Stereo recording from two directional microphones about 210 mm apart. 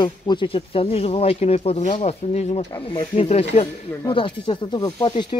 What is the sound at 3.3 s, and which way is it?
Speech, 30° left (ahead or behind).